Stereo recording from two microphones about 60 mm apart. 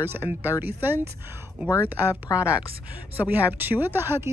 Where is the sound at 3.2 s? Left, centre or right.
Right.